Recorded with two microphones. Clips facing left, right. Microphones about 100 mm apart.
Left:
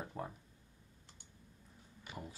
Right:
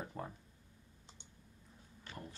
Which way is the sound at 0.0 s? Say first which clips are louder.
Left 1 dB; 5° left (ahead or behind).